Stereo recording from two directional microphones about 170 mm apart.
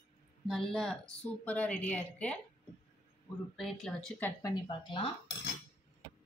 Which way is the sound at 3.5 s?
Centre (ahead or behind).